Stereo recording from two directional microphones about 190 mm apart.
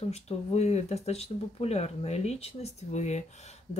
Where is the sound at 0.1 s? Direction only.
35° left (ahead or behind).